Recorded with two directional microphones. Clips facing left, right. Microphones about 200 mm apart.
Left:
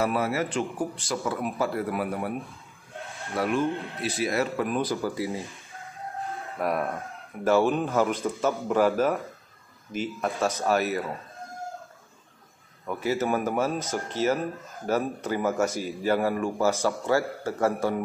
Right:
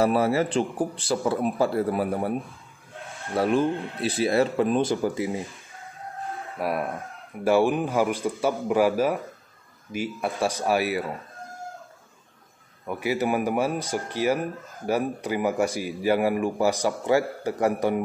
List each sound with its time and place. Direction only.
0.0 s speech: 30° right (ahead or behind)
3.3 s speech: 30° right (ahead or behind)
6.6 s speech: 5° right (ahead or behind)
12.8 s speech: 10° right (ahead or behind)